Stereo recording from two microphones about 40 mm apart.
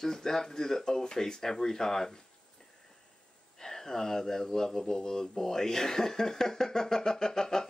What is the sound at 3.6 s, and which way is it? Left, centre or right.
Speech, centre.